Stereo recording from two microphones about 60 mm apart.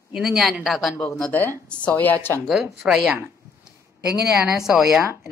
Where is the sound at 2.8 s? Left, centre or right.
Centre.